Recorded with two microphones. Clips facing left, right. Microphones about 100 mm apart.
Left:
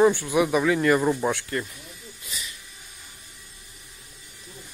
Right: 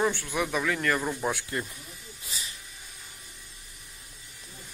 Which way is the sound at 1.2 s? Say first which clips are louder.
Left 4 dB; centre (ahead or behind).